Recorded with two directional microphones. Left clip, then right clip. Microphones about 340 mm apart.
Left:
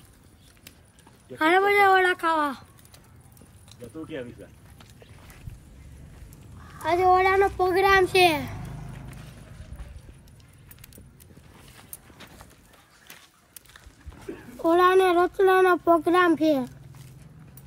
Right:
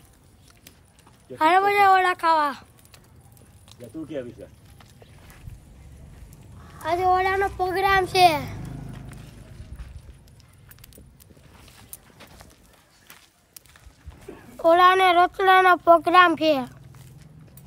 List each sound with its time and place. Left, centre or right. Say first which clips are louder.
1.5 s speech: right 1 dB; centre
5.0 s a sound: even; centre
6.3 s speech: even; centre
7.8 s speech: right 2 dB; right
13.7 s a sound: left 2 dB; centre
15.0 s child singing: right 4 dB; centre
15.5 s a child's voice: right 7 dB; centre